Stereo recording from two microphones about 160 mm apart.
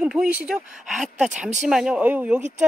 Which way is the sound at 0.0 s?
5° right (ahead or behind).